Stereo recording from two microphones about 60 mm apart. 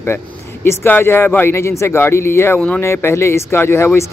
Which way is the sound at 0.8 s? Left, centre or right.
Left.